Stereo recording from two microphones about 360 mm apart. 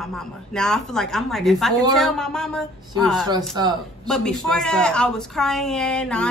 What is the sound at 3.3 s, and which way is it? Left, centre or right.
Speech, centre.